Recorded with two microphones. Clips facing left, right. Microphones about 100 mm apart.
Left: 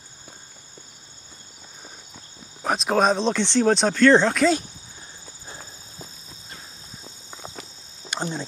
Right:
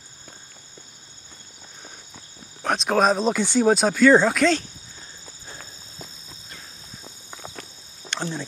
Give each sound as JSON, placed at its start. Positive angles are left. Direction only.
{"t": 2.1, "sound": "speech", "side_deg": 5}
{"t": 5.5, "sound": "horse", "side_deg": 15}
{"t": 8.1, "sound": "speech", "side_deg": 15}